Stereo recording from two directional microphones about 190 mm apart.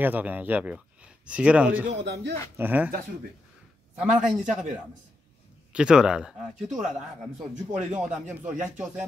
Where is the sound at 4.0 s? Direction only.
5° right (ahead or behind).